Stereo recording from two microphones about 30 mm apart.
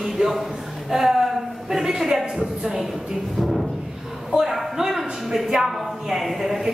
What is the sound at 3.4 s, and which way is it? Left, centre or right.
Music, centre.